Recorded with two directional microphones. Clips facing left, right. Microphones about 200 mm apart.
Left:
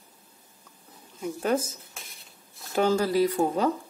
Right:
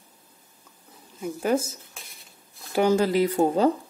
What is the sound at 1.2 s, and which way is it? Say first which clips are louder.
Speech: right 2 dB; 10° right (ahead or behind).